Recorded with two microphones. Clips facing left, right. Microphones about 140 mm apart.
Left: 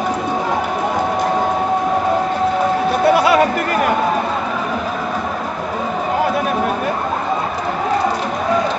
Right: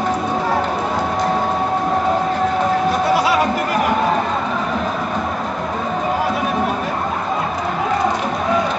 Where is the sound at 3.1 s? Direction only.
60° left (ahead or behind).